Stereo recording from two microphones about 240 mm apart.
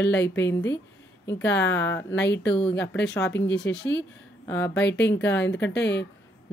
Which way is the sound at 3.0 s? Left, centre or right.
Centre.